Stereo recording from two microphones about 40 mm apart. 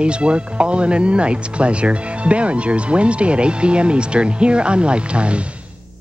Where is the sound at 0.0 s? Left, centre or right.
Right.